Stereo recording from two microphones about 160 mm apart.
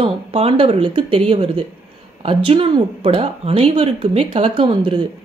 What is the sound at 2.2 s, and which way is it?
Speech, 35° right (ahead or behind).